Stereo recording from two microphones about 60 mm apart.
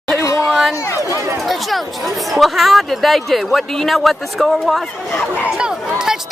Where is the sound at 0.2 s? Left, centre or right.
Left.